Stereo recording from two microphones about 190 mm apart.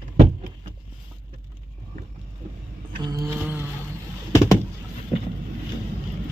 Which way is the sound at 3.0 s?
20° right (ahead or behind).